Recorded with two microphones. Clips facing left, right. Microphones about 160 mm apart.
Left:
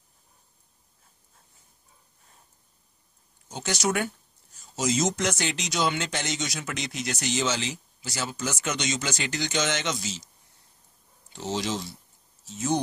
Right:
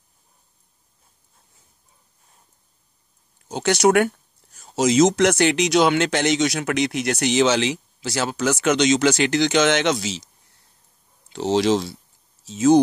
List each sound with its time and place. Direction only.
3.4 s speech: 80° right
11.2 s speech: 90° right